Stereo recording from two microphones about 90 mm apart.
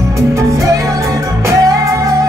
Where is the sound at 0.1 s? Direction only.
35° right (ahead or behind).